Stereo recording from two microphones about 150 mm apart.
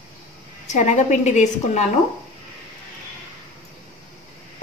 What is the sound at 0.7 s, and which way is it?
A woman's voice, 55° left (ahead or behind).